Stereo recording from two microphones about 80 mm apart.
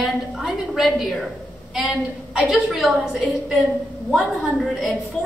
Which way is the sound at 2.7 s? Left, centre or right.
Centre.